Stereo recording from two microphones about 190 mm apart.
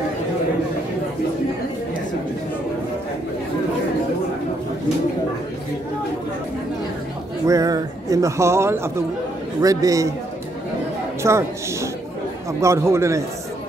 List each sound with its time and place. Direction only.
7.4 s a man's voice: 20° right (ahead or behind)
11.2 s a man's voice: 15° right (ahead or behind)